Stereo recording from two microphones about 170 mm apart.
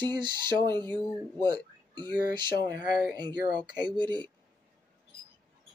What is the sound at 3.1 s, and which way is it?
Speech, 25° right (ahead or behind).